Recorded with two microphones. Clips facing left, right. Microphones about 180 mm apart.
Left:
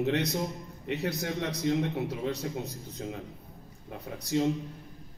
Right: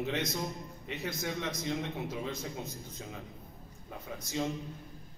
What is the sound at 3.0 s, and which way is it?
Speech, 50° left (ahead or behind).